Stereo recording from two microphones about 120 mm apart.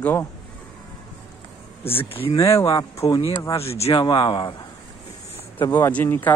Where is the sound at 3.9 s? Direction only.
40° left (ahead or behind).